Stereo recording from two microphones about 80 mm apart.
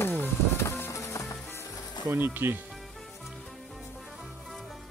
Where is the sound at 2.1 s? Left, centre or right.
Right.